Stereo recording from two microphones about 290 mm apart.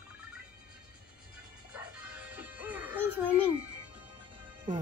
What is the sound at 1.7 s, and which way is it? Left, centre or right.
Music, centre.